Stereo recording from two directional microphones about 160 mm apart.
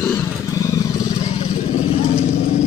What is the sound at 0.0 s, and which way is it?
Wild animals, 20° left (ahead or behind).